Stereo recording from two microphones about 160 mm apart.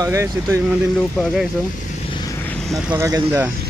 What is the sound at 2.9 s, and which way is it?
Speech, 15° right (ahead or behind).